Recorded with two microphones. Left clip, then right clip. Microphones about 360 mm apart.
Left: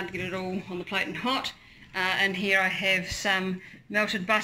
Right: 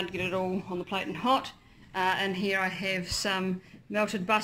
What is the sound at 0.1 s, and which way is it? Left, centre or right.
Speech, centre.